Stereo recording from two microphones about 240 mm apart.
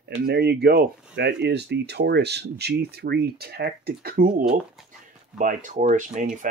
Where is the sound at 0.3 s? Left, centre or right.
Right.